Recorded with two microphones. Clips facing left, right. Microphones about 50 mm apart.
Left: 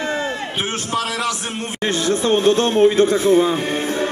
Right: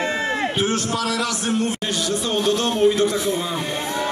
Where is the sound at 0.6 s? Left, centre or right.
Left.